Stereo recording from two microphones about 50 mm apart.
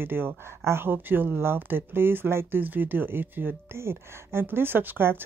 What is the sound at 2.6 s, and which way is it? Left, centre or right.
Speech, right.